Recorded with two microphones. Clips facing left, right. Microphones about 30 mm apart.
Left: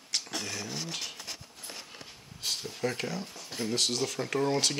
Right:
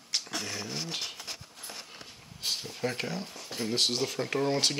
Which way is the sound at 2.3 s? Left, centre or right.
Centre.